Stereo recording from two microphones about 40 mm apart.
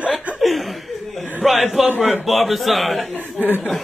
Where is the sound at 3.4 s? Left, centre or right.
Right.